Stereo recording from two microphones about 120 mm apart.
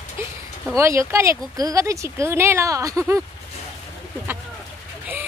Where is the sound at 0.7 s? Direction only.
25° right (ahead or behind).